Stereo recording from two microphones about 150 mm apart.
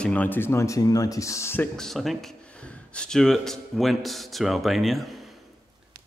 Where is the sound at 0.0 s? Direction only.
10° left (ahead or behind).